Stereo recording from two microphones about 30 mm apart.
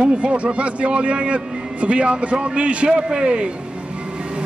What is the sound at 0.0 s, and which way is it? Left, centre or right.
Speech, right.